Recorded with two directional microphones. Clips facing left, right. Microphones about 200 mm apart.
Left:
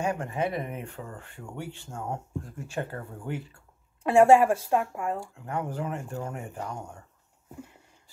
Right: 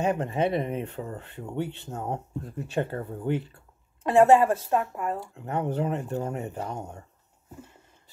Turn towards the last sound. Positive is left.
turn(degrees=-25)  # may be behind; listen again after turning